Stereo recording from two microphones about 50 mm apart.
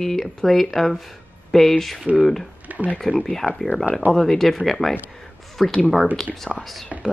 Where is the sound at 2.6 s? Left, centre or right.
Right.